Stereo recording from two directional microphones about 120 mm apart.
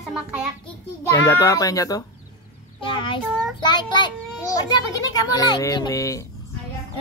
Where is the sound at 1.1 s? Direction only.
25° left (ahead or behind).